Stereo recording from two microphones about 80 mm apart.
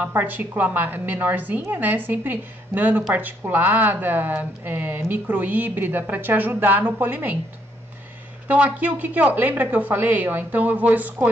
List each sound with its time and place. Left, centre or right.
0.1 s speech: right
8.5 s speech: centre